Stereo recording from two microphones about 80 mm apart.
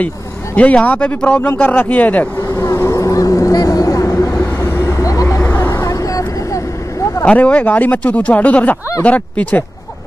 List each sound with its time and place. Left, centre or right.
0.6 s speech: centre
2.4 s vehicle: left
5.4 s vehicle: left
7.2 s speech: centre